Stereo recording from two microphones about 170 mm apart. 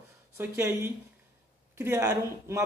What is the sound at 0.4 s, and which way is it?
A man's voice, 15° right (ahead or behind).